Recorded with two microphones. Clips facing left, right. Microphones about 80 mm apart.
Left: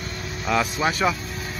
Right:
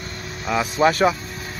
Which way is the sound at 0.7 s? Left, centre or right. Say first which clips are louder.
Right 6 dB; right.